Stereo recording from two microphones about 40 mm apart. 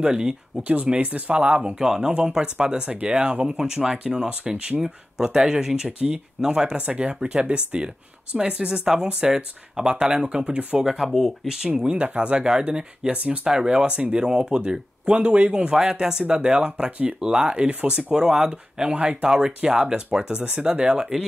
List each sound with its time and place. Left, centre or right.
0.0 s speech: centre
0.7 s speech: right
1.4 s speech: right
1.8 s speech: centre
2.0 s speech: right
10.8 s speech: centre
11.4 s speech: centre; by 13.5 s right
13.5 s speech: centre
15.1 s speech: right